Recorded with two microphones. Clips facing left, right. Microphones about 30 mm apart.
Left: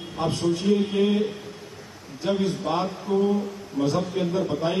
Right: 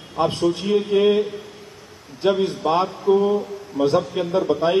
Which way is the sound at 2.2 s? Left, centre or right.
Right.